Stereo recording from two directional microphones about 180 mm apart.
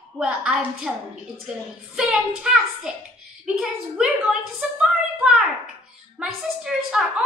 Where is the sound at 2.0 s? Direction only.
5° right (ahead or behind).